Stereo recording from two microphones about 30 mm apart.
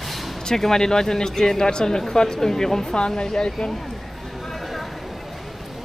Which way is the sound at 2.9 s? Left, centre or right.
Left.